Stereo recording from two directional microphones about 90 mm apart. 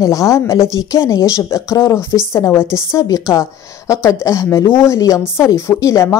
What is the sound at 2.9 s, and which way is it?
A woman's voice, 40° left (ahead or behind).